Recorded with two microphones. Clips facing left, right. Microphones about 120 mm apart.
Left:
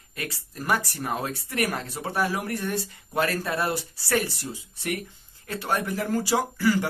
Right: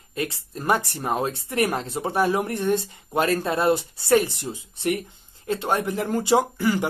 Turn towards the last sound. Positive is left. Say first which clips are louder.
# right 2 dB
turn(degrees=-20)  # may be behind; listen again after turning